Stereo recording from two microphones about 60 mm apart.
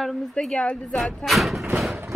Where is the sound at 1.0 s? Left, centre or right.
Centre.